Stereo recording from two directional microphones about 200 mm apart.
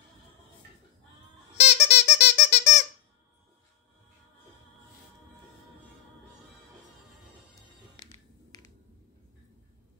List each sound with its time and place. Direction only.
1.5 s squeak: 35° left (ahead or behind)
7.9 s music: 20° left (ahead or behind)